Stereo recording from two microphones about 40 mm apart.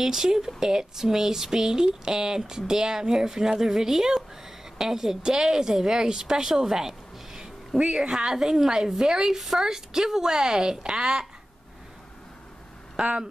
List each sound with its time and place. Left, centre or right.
0.0 s a woman's voice: centre
13.0 s a woman's voice: centre